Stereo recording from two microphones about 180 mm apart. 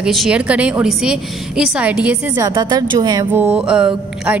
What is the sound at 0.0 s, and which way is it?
A woman's voice, centre (ahead or behind).